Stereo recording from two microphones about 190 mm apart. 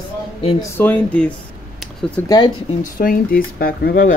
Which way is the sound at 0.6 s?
10° left (ahead or behind).